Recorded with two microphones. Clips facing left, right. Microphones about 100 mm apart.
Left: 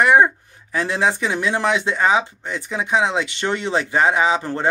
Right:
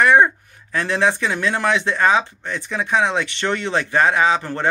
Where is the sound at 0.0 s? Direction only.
15° left (ahead or behind).